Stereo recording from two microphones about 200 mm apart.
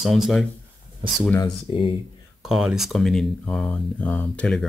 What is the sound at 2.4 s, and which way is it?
Speech, centre (ahead or behind).